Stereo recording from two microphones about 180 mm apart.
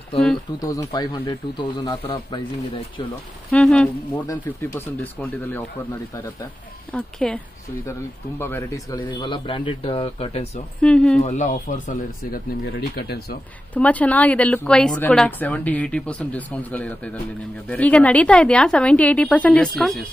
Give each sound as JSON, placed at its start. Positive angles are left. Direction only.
{"t": 0.6, "sound": "a man's voice", "side_deg": 20}
{"t": 3.5, "sound": "speech", "side_deg": 5}
{"t": 6.9, "sound": "a man's voice", "side_deg": 5}
{"t": 10.8, "sound": "speech", "side_deg": 5}
{"t": 11.2, "sound": "speech", "side_deg": 40}
{"t": 12.9, "sound": "speech", "side_deg": 60}
{"t": 13.7, "sound": "speech", "side_deg": 5}